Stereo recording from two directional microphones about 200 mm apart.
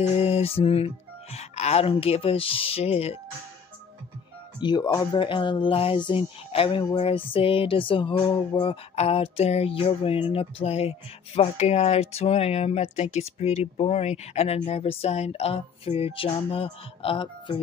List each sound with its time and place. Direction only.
0.0 s speech: 30° left (ahead or behind)
4.6 s speech: 20° left (ahead or behind)